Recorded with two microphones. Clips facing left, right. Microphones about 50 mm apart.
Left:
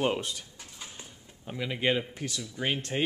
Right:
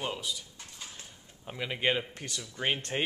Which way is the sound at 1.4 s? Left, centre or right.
Centre.